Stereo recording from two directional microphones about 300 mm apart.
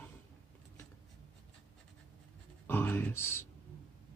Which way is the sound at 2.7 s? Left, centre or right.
Centre.